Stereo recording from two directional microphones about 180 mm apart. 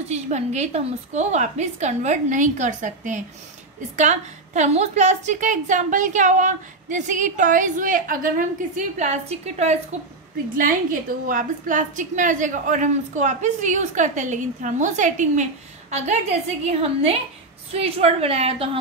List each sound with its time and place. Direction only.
0.1 s a woman's voice: 40° right (ahead or behind)
10.6 s a woman's voice: 50° right (ahead or behind); by 18.8 s 30° right (ahead or behind)